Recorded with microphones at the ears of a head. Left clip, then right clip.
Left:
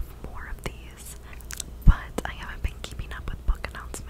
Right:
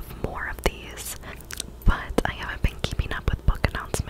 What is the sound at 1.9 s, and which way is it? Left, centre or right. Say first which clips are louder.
Whispering: right 7 dB; right.